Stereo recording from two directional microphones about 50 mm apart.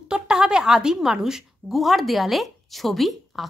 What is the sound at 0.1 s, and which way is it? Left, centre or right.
A woman's voice, centre.